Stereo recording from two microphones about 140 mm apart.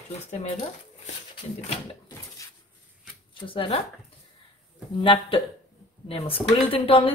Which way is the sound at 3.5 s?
40° left (ahead or behind).